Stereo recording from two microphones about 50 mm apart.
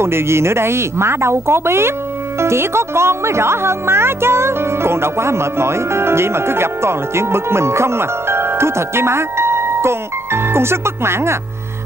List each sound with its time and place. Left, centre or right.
0.0 s speech: right